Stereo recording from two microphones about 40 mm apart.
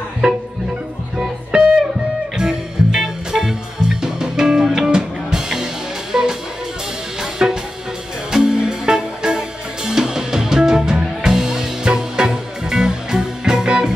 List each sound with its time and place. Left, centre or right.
0.2 s music: right
9.8 s drum kit: centre
11.2 s music: centre